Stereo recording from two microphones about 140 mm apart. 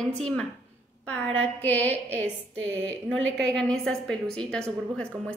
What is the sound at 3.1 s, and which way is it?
A woman's voice, 5° left (ahead or behind).